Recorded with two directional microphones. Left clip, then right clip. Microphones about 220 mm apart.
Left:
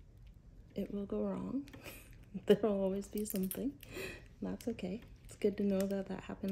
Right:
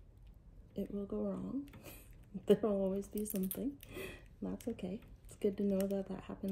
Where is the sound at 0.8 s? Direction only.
10° left (ahead or behind).